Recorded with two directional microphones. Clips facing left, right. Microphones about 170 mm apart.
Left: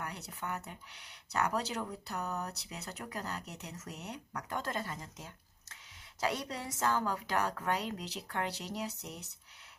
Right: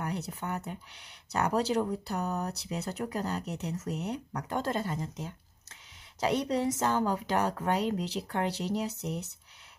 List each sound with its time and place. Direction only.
0.0 s speech: 25° right (ahead or behind)